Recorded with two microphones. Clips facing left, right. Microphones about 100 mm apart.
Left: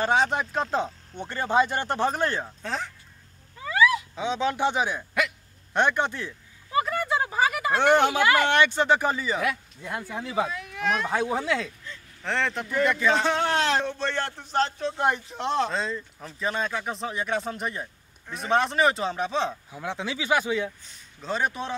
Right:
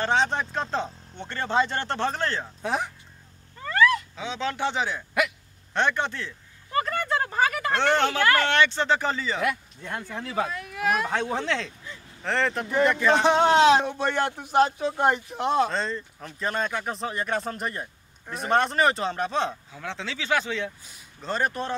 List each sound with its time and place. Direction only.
0.0 s speech: 10° left (ahead or behind)
2.6 s speech: 15° right (ahead or behind)
3.5 s cat: 5° left (ahead or behind)
4.1 s speech: 15° left (ahead or behind); by 11.1 s 5° right (ahead or behind)
11.1 s speech: 10° left (ahead or behind)
11.8 s a sound: 10° right (ahead or behind)
12.3 s speech: centre (ahead or behind)
13.2 s speech: 20° right (ahead or behind); by 19.5 s centre (ahead or behind)
19.7 s speech: 15° left (ahead or behind)
20.8 s a man's voice: 5° right (ahead or behind)